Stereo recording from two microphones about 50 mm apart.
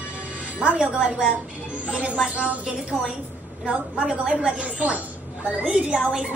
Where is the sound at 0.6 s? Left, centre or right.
Centre.